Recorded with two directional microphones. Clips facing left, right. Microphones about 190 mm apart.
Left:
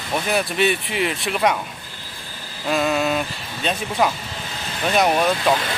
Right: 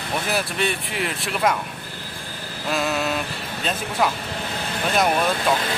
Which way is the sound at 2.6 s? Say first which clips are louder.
Left 4 dB; centre (ahead or behind).